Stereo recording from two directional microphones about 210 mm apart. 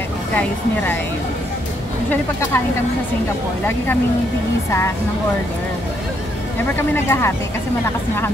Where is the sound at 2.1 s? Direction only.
10° left (ahead or behind).